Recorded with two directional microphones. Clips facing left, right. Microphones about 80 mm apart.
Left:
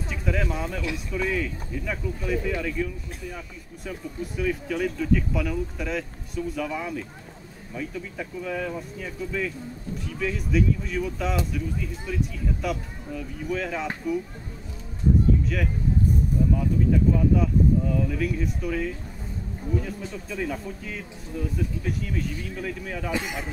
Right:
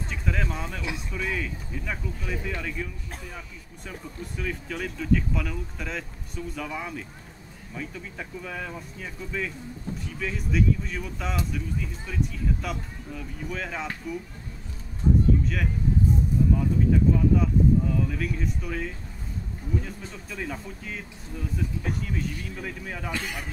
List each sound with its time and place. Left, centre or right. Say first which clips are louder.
0.1 s speech: left 3 dB; centre
4.4 s speech: left 6 dB; centre
15.4 s speech: left 1 dB; centre
23.1 s a man's voice: left 4 dB; centre